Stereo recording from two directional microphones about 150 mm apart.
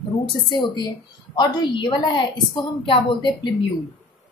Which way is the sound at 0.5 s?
30° left (ahead or behind).